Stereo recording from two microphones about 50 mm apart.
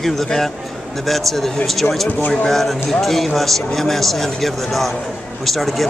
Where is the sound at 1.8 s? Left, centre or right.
Left.